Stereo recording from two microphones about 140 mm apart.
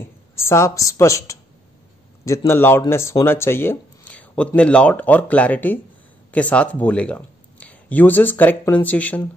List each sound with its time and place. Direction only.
0.0 s a man's voice: 20° left (ahead or behind)